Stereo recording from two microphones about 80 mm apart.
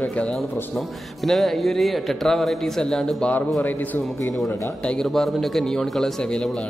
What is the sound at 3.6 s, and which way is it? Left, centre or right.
Speech, left.